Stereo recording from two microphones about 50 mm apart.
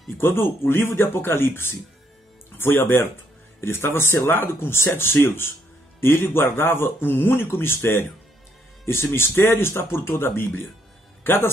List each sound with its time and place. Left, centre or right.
0.2 s a man's voice: left